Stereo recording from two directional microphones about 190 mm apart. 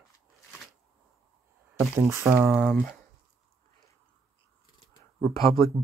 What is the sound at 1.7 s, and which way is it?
Speech, 15° right (ahead or behind).